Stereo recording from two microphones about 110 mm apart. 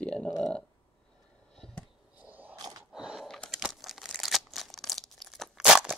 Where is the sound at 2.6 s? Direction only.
30° right (ahead or behind).